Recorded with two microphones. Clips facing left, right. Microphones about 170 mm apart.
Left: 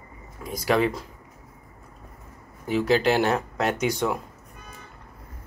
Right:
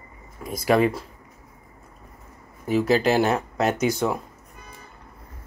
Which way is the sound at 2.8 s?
5° right (ahead or behind).